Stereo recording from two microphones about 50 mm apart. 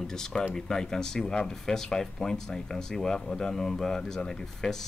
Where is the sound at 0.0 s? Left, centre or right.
Centre.